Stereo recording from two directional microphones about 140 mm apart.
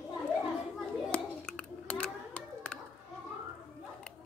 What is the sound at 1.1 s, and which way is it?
Hands, 5° left (ahead or behind).